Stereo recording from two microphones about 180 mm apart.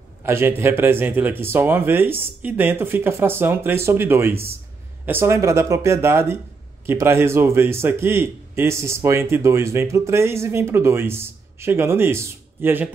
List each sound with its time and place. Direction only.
0.2 s a man's voice: 15° right (ahead or behind)